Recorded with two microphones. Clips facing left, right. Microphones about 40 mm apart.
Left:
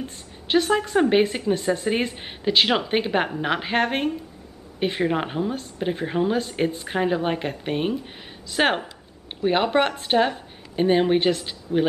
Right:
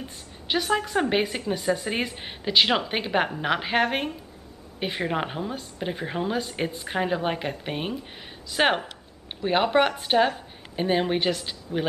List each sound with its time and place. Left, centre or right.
0.5 s a woman's voice: centre